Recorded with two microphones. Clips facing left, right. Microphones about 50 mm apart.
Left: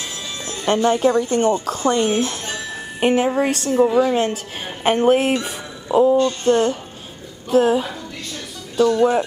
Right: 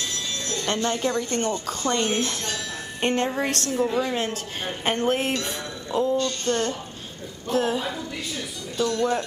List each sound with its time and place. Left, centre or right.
0.1 s speech: centre
8.7 s speech: centre